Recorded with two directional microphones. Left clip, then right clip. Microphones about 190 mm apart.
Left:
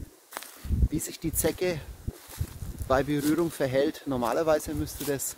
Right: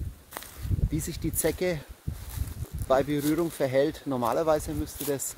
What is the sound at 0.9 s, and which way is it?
Speech, 10° left (ahead or behind).